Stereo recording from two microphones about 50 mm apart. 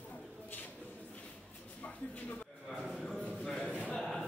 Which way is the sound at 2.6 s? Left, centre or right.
Centre.